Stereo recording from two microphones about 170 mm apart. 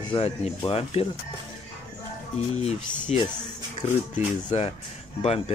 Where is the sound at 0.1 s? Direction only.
25° left (ahead or behind).